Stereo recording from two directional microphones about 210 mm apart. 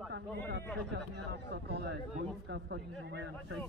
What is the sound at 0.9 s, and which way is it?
A man's voice, 55° right (ahead or behind).